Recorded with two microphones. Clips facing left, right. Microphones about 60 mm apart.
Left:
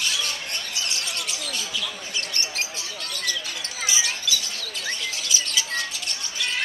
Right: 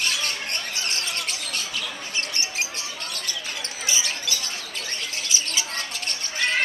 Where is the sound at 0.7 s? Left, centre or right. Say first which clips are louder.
Right 1 dB; right.